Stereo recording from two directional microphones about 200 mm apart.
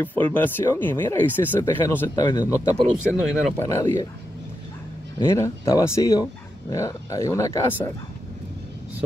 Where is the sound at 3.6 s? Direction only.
15° left (ahead or behind).